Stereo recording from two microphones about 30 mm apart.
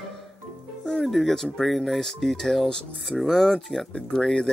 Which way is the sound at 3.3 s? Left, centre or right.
Centre.